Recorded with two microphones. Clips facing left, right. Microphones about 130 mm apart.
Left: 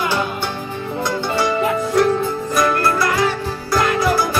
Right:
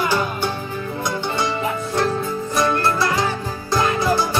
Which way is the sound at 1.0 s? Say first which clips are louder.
Left 4 dB; 25° right (ahead or behind).